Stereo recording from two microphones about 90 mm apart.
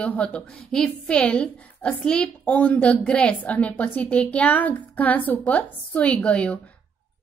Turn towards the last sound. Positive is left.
turn(degrees=10)  # may be behind; listen again after turning